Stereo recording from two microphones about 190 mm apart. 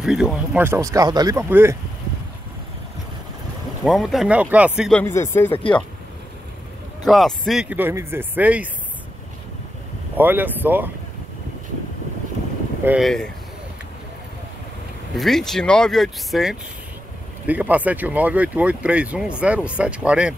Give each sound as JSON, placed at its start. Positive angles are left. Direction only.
{"t": 0.0, "sound": "speech", "side_deg": -5}
{"t": 0.7, "sound": "speech", "side_deg": -15}
{"t": 3.8, "sound": "speech", "side_deg": 0}
{"t": 4.9, "sound": "speech", "side_deg": 15}
{"t": 5.5, "sound": "speech", "side_deg": 30}
{"t": 7.1, "sound": "speech", "side_deg": 0}
{"t": 10.1, "sound": "speech", "side_deg": -10}
{"t": 12.8, "sound": "speech", "side_deg": -5}
{"t": 15.1, "sound": "speech", "side_deg": 0}